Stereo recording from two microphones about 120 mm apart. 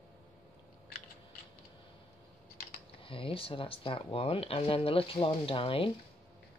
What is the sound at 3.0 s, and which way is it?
Speech, 45° left (ahead or behind).